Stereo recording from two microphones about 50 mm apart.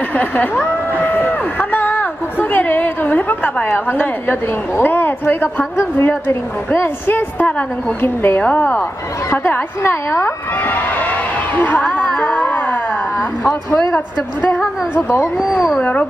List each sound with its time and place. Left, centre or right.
0.1 s speech: left
0.9 s a sound: left
3.6 s a woman's voice: left
8.4 s speech: left
9.3 s a woman's voice: left
10.6 s a sound: left
15.0 s a woman's voice: left
15.3 s speech: centre
15.8 s speech: left